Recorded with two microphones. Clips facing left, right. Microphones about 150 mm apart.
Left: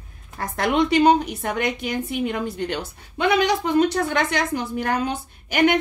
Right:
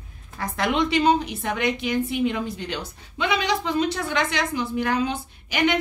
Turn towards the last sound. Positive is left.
turn(degrees=50)  # may be behind; listen again after turning